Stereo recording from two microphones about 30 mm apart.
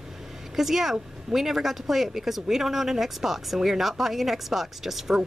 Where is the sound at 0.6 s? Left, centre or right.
Centre.